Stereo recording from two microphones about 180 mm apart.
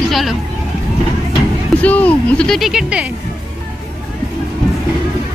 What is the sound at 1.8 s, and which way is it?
Speech, 10° left (ahead or behind).